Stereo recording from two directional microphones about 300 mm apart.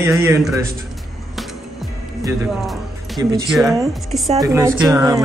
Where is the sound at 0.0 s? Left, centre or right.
Centre.